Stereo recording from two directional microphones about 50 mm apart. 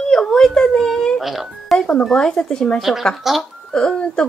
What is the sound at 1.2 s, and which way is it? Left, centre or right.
Speech, centre.